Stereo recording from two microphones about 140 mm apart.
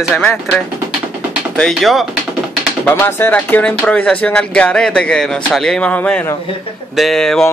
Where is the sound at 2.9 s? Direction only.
15° left (ahead or behind).